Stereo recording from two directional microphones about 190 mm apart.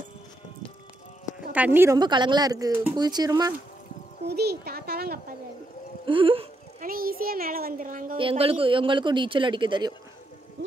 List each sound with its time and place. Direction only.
1.5 s speech: 10° right (ahead or behind)
4.3 s a child's voice: 60° right (ahead or behind)
6.0 s speech: 25° right (ahead or behind)
6.8 s a child's voice: 50° right (ahead or behind)
8.2 s speech: 30° right (ahead or behind)